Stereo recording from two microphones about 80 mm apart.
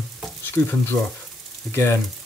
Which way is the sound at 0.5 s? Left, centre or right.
Left.